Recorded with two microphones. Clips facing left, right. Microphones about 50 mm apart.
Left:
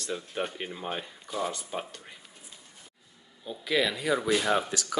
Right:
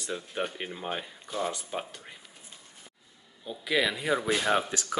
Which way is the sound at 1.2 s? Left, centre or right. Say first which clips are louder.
Even; right.